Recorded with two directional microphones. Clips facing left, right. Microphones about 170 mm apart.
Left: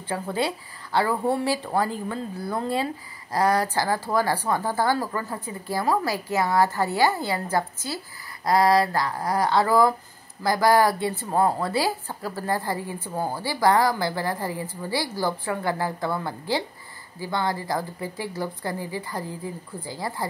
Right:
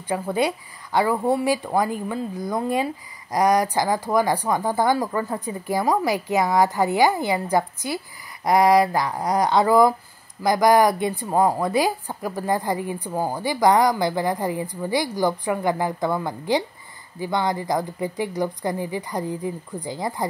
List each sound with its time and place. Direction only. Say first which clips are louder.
0.1 s a woman's voice: right 4 dB; 15° right (ahead or behind)